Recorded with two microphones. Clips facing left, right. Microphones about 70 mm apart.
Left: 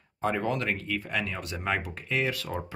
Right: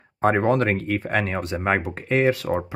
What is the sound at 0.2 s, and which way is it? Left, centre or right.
Speech, right.